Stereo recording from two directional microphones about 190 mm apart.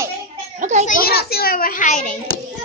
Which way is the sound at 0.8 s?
55° left (ahead or behind).